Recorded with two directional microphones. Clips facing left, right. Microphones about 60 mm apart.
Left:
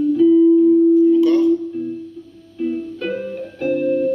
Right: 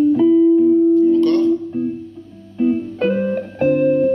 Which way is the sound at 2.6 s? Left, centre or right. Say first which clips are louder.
Right 5 dB; right.